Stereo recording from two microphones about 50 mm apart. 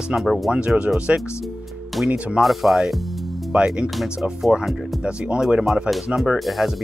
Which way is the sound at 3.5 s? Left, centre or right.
Right.